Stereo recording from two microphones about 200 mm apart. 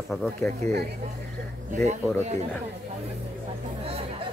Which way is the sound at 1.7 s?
35° right (ahead or behind).